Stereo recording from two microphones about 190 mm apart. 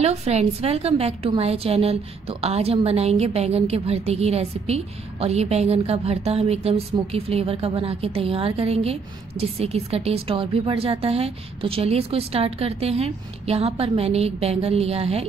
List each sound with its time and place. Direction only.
0.0 s a woman's voice: 35° right (ahead or behind)